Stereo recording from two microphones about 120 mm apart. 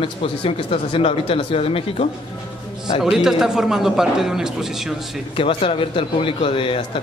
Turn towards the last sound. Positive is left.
turn(degrees=50)  # may be behind; listen again after turning